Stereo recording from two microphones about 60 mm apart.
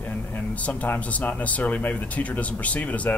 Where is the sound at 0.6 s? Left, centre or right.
Left.